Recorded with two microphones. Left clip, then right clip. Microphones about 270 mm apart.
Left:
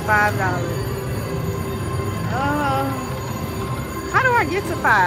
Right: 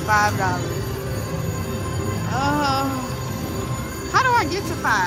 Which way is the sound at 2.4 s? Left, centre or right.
Centre.